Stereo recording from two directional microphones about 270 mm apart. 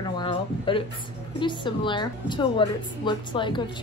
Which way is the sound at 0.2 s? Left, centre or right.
Centre.